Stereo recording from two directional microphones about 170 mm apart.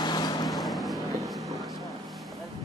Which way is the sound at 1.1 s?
Centre (ahead or behind).